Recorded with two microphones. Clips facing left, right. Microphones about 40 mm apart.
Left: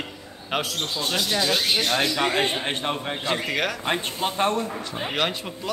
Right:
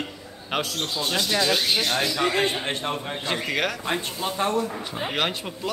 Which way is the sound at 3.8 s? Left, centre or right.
Left.